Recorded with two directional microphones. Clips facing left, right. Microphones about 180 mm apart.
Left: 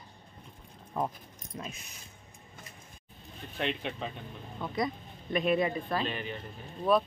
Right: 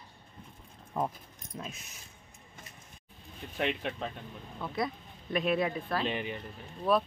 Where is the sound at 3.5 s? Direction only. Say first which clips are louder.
Right 1 dB; 5° right (ahead or behind).